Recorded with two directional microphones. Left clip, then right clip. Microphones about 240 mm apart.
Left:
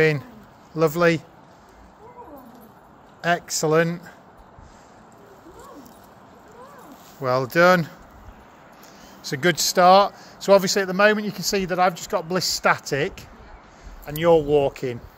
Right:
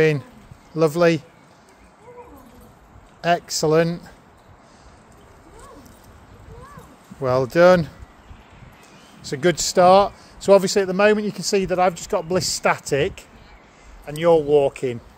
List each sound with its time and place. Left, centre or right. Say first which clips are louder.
0.7 s speech: right 2 dB; right
3.2 s speech: right 2 dB; right
7.2 s speech: right 2 dB; right
9.2 s speech: right 1 dB; right